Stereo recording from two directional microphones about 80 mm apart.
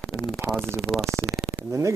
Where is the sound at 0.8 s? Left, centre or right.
Centre.